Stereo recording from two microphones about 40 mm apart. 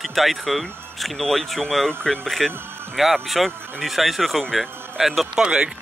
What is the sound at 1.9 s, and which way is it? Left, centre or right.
Speech, left.